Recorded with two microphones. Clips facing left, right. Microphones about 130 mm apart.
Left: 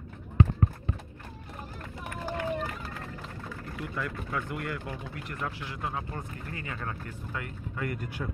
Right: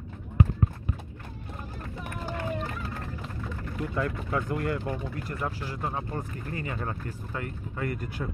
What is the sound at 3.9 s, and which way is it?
Speech, 30° right (ahead or behind).